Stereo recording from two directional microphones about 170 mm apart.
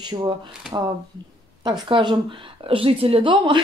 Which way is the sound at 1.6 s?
25° right (ahead or behind).